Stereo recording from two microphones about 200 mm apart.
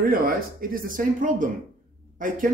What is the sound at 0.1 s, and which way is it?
A man's voice, 45° right (ahead or behind).